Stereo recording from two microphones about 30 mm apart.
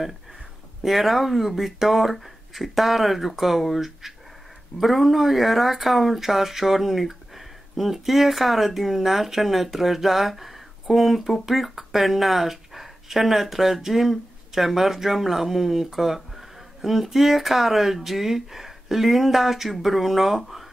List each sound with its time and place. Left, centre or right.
0.8 s speech: centre